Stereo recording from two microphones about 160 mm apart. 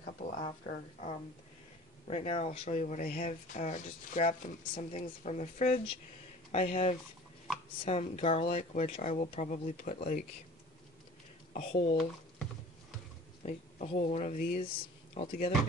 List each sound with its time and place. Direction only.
0.0 s speech: 60° left (ahead or behind)
2.0 s speech: 40° left (ahead or behind)
8.5 s speech: 60° left (ahead or behind)
8.8 s speech: 45° left (ahead or behind)
9.9 s speech: 65° left (ahead or behind)
11.5 s speech: 40° left (ahead or behind)
13.4 s speech: 50° left (ahead or behind)
14.6 s speech: 35° left (ahead or behind)